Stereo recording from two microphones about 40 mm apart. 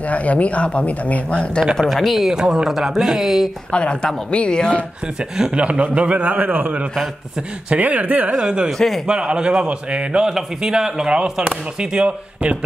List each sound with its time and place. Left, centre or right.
0.0 s speech: left
1.8 s speech: centre
3.7 s speech: left
5.5 s a man's voice: right
8.3 s speech: right
8.7 s speech: centre
9.0 s speech: right
10.2 s speech: centre